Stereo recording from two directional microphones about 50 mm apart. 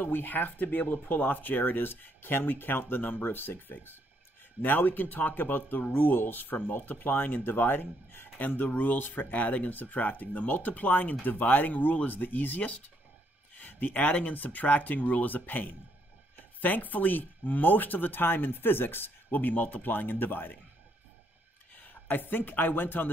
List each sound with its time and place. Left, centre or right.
0.0 s speech: left
22.0 s speech: left